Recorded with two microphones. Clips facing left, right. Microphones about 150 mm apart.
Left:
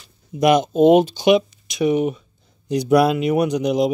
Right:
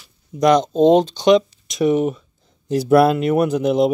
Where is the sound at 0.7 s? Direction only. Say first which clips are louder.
Even; 10° left (ahead or behind).